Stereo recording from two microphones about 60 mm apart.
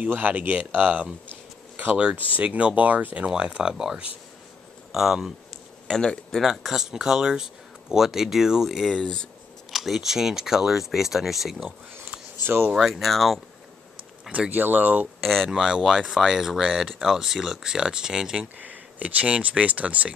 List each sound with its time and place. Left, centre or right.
0.0 s speech: right
3.3 s speech: centre
5.9 s speech: centre
8.9 s speech: centre
9.7 s speech: centre
12.7 s speech: centre
14.5 s speech: right
15.2 s speech: centre
15.5 s speech: centre
18.6 s speech: right